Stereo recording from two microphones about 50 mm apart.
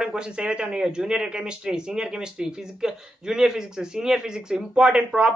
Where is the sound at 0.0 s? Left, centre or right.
Centre.